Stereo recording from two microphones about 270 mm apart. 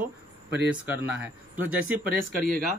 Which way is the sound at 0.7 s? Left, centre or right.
Centre.